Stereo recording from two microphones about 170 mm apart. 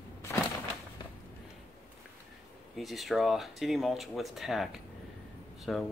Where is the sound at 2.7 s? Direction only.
Centre (ahead or behind).